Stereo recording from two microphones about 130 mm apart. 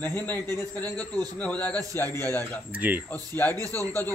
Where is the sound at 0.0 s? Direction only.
15° left (ahead or behind).